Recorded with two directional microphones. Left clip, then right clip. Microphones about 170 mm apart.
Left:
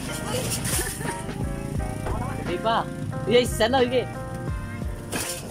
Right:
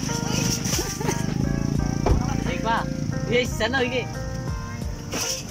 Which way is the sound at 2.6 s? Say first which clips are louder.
Left 2 dB; 20° left (ahead or behind).